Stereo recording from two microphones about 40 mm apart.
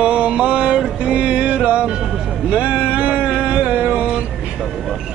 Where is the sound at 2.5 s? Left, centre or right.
Right.